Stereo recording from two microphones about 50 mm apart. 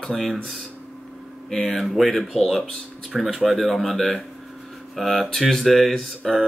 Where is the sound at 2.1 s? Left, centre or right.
Centre.